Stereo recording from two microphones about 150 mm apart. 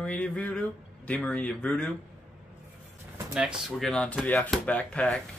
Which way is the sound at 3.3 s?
5° right (ahead or behind).